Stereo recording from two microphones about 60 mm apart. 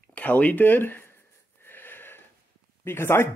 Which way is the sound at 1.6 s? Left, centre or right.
Left.